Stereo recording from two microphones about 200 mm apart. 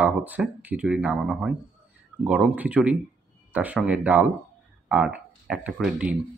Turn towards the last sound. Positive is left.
turn(degrees=-5)  # may be behind; listen again after turning